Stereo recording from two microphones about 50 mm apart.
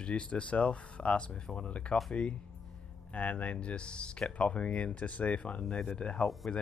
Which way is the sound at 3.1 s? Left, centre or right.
Left.